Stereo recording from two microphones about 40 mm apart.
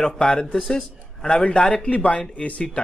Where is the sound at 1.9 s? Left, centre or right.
Left.